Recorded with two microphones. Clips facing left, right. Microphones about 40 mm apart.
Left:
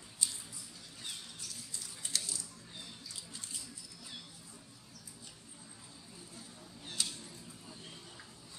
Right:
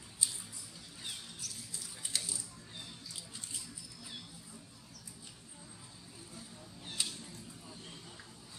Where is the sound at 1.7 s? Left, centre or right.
Centre.